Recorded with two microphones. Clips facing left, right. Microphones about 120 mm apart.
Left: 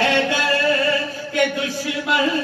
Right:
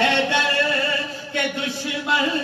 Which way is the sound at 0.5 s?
25° right (ahead or behind).